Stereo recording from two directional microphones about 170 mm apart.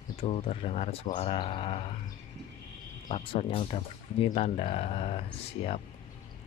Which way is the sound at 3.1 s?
35° left (ahead or behind).